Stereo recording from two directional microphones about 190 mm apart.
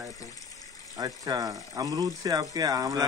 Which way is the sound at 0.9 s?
20° right (ahead or behind).